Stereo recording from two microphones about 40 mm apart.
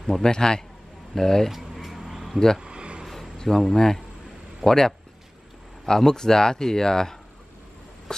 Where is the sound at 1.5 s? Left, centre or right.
Centre.